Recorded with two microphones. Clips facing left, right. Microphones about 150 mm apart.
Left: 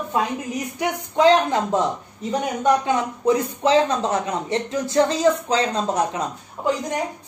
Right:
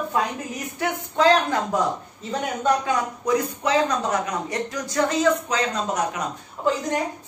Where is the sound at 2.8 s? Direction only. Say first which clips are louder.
Left 4 dB; 25° left (ahead or behind).